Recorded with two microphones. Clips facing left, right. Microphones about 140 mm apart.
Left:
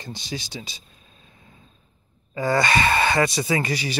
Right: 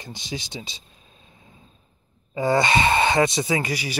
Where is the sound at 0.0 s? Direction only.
20° right (ahead or behind).